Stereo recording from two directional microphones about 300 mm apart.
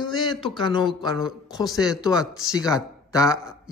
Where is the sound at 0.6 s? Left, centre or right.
Centre.